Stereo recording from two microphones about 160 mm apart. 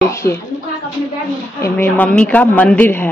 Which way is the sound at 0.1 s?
20° left (ahead or behind).